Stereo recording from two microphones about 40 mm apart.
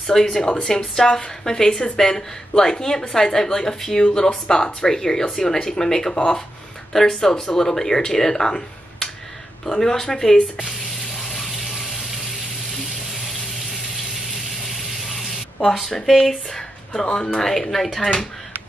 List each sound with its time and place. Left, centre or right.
0.0 s speech: centre
11.1 s water: centre
12.7 s vehicle: centre
14.7 s a sound: centre
15.8 s speech: centre
16.3 s a sound: centre
17.0 s speech: left